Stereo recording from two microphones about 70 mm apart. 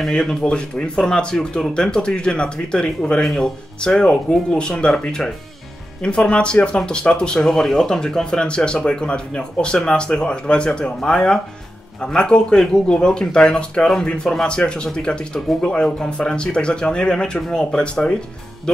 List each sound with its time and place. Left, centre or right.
0.0 s speech: centre